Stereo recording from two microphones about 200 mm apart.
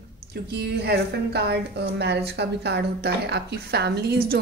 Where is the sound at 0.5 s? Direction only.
55° right (ahead or behind).